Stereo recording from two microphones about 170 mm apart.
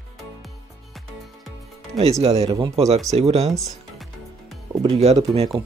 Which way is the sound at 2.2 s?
35° right (ahead or behind).